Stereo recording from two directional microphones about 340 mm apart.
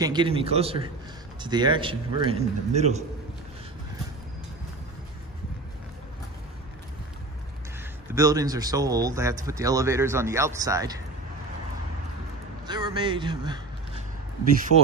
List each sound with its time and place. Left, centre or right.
0.0 s speech: centre
8.1 s speech: centre
12.6 s a man's voice: centre
14.7 s speech: left